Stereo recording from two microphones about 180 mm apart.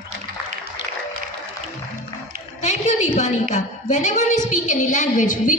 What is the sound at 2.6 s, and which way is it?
A woman's voice, 40° left (ahead or behind).